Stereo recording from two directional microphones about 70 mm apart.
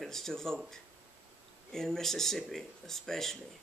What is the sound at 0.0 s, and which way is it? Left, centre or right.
Speech, centre.